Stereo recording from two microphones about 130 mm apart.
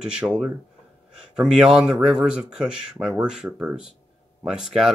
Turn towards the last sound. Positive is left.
turn(degrees=-5)  # may be behind; listen again after turning